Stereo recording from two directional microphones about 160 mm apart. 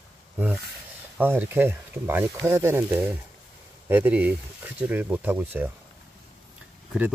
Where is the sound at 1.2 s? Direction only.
15° right (ahead or behind).